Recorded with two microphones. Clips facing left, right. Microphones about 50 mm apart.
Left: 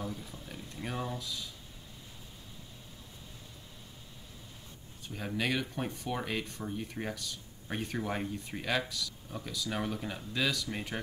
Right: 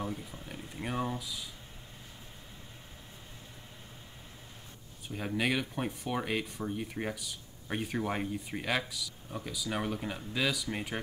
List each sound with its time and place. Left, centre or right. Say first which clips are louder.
0.0 s speech: right 2 dB; right
0.5 s speech: right 2 dB; centre
5.0 s speech: right 2 dB; centre